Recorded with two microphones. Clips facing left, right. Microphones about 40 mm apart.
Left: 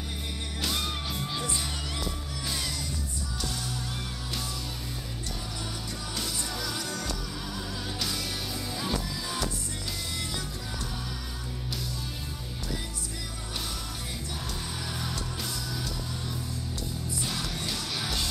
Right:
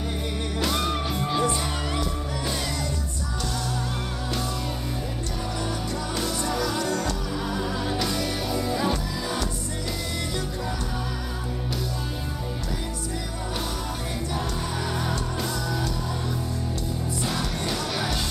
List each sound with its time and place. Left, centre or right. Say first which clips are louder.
0.6 s music: right 6 dB; centre
6.1 s music: right 8 dB; centre
8.0 s music: right 7 dB; centre
17.2 s music: right 5 dB; centre